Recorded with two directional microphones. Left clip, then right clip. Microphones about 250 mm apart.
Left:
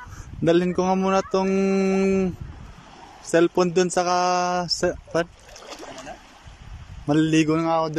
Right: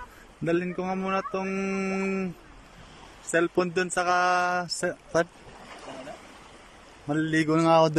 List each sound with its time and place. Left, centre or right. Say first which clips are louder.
0.5 s speech: left 8 dB; centre
7.1 s a man's voice: left 5 dB; centre